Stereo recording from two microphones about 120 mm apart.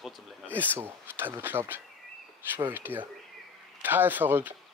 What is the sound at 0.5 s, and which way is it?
Speech, 15° right (ahead or behind).